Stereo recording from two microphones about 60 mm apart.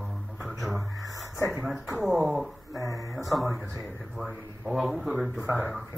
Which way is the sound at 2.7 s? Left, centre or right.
Left.